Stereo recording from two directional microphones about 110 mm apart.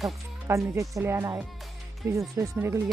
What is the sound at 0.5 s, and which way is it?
A woman's voice, 25° right (ahead or behind).